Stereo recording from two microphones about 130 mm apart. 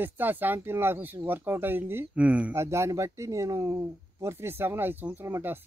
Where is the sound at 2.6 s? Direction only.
20° right (ahead or behind).